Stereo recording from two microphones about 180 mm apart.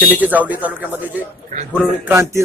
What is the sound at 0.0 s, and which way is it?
A man's voice, 10° right (ahead or behind).